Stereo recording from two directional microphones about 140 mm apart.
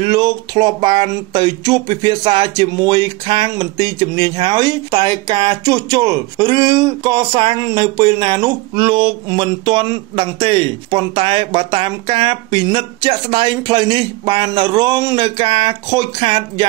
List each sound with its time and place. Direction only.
0.0 s speech: 30° right (ahead or behind)